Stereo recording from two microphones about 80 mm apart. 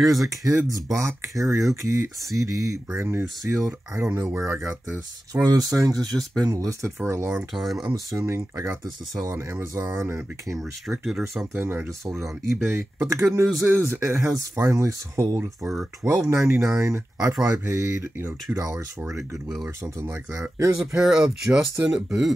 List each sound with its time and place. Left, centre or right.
0.1 s speech: right
7.5 s speech: centre
7.8 s speech: right
10.6 s speech: centre
11.3 s speech: right
15.6 s speech: centre
16.3 s speech: right
19.8 s speech: right
20.7 s speech: centre
21.2 s speech: right
21.9 s speech: centre